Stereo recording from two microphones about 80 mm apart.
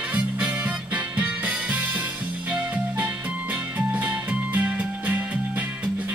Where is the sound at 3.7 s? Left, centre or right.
Right.